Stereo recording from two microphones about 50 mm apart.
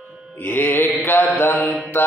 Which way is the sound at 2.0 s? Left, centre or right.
Left.